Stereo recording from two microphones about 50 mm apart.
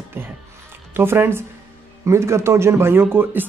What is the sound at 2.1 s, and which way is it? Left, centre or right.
Speech, right.